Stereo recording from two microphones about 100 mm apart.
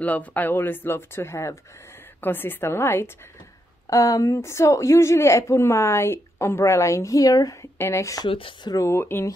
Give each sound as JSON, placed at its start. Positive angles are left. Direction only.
{"t": 0.0, "sound": "a woman's voice", "side_deg": 15}
{"t": 8.3, "sound": "speech", "side_deg": 60}
{"t": 8.7, "sound": "a woman's voice", "side_deg": 25}